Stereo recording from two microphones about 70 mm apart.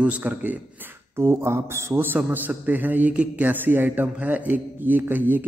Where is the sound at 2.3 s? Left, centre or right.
Right.